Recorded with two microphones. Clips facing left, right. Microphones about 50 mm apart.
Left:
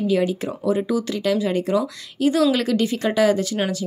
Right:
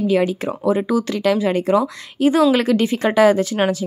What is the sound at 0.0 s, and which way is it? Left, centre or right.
A woman's voice, right.